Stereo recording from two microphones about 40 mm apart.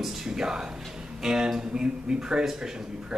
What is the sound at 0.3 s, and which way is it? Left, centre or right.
A man's voice, centre.